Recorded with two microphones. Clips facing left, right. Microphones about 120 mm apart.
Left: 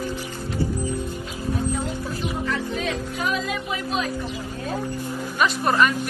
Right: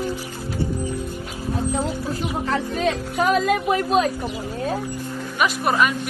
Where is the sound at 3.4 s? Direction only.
55° right (ahead or behind).